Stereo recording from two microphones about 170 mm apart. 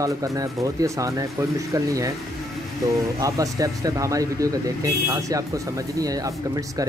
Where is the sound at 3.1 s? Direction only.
20° right (ahead or behind).